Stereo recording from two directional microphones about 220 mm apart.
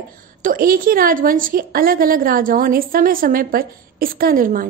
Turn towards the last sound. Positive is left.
turn(degrees=-40)  # may be behind; listen again after turning